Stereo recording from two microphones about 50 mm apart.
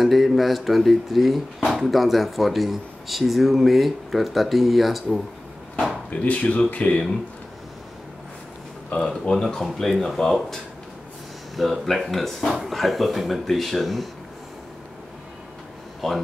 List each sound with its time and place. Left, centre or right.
0.0 s speech: centre
6.0 s speech: left
9.1 s speech: centre
16.0 s speech: centre